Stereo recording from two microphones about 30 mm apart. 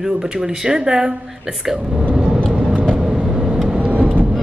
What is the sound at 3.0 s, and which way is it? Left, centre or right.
Vehicle, centre.